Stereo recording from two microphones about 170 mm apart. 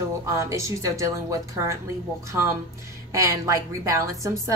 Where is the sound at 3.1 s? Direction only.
20° right (ahead or behind).